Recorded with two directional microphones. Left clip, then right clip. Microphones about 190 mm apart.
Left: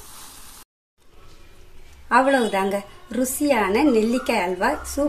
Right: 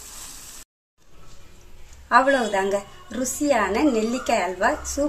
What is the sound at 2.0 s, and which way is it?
A woman's voice, 15° left (ahead or behind).